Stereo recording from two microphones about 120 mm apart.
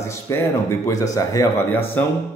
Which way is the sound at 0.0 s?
20° left (ahead or behind).